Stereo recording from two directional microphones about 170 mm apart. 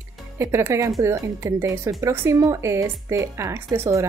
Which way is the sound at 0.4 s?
15° right (ahead or behind).